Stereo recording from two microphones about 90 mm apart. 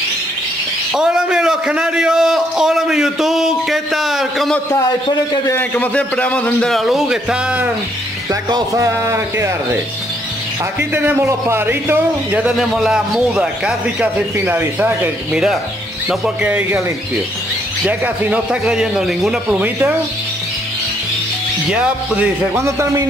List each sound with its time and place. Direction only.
0.9 s a man's voice: 10° right (ahead or behind)
5.6 s a man's voice: 15° left (ahead or behind); by 7.7 s 15° right (ahead or behind)
8.3 s speech: 45° right (ahead or behind)
10.8 s a man's voice: 25° right (ahead or behind)
12.5 s a man's voice: 5° right (ahead or behind); by 15.0 s 25° right (ahead or behind)
17.8 s a man's voice: 15° right (ahead or behind)
19.5 s a man's voice: 20° right (ahead or behind)
21.6 s a man's voice: 10° right (ahead or behind)
22.6 s speech: 30° right (ahead or behind)